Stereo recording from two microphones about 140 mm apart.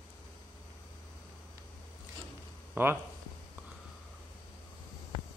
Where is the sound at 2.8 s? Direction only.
15° right (ahead or behind).